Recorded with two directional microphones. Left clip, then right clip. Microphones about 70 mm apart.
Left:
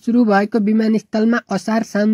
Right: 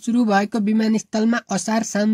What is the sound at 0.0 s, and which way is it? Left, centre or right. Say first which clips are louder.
Speech: left 4 dB; left.